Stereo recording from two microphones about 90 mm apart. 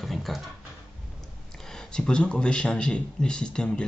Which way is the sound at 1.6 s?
10° left (ahead or behind).